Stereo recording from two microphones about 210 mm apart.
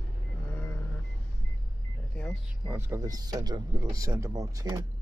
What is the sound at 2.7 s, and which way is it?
Speech, 10° right (ahead or behind).